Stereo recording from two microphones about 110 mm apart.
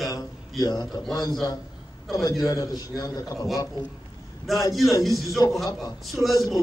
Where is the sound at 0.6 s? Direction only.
35° left (ahead or behind).